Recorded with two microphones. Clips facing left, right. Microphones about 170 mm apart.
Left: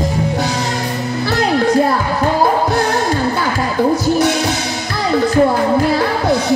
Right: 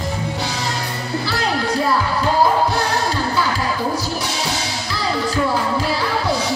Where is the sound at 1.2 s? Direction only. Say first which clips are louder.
Left 8 dB; 50° left (ahead or behind).